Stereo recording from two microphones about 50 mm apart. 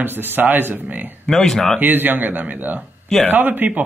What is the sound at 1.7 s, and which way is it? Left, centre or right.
Speech, right.